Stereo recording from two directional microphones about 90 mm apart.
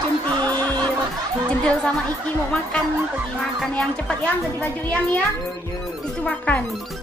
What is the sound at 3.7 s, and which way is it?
A child's voice, 15° left (ahead or behind).